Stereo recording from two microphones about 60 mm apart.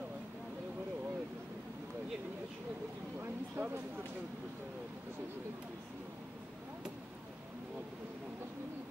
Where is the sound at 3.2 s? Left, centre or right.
Right.